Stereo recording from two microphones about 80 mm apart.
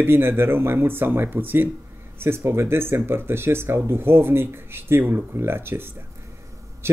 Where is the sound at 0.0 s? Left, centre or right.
Right.